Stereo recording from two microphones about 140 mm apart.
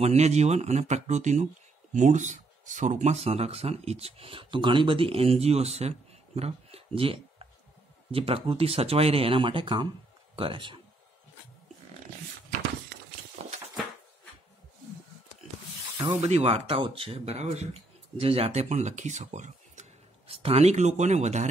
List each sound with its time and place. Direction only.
0.0 s speech: 50° right (ahead or behind)
13.4 s horse: 50° right (ahead or behind)
16.2 s speech: 45° right (ahead or behind)
20.2 s speech: 45° right (ahead or behind)